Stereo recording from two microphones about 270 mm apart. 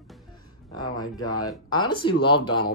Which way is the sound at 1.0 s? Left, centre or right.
Centre.